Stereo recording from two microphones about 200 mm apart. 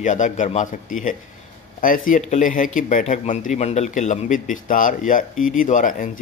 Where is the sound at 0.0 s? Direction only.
40° left (ahead or behind).